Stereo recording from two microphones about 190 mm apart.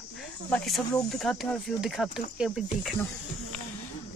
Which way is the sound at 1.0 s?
Centre (ahead or behind).